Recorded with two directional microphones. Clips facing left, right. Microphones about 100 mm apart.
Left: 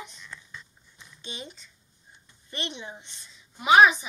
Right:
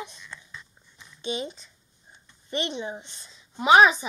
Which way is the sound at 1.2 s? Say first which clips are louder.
Right 10 dB; 20° right (ahead or behind).